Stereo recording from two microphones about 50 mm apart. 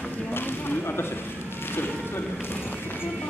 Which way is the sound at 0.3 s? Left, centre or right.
Left.